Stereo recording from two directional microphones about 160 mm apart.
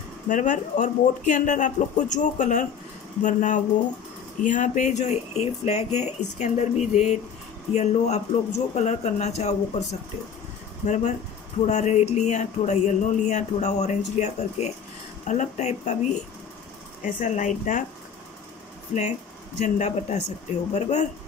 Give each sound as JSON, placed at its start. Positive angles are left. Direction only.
{"t": 0.3, "sound": "speech", "side_deg": 50}
{"t": 10.9, "sound": "speech", "side_deg": 45}
{"t": 18.9, "sound": "speech", "side_deg": 50}